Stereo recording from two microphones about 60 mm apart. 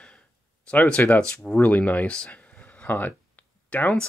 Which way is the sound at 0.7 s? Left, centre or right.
Left.